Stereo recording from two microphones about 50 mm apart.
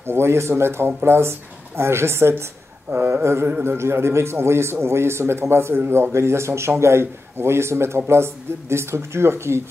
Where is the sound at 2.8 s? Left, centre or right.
Right.